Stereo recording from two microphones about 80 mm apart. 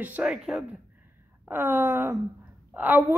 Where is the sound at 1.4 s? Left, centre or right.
Right.